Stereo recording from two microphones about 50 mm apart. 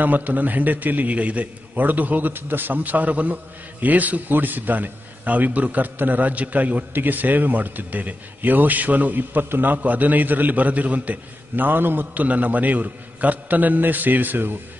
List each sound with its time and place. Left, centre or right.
0.0 s speech: right